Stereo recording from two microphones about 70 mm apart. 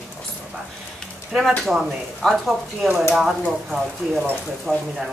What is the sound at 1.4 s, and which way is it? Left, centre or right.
Speech, centre.